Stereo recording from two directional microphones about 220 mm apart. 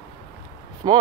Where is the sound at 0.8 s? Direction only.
20° right (ahead or behind).